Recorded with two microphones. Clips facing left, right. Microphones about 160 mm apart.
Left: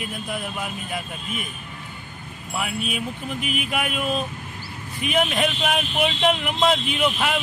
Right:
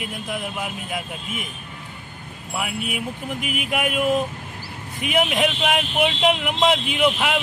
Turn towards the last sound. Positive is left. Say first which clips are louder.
# right 2 dB
turn(degrees=-5)  # may be behind; listen again after turning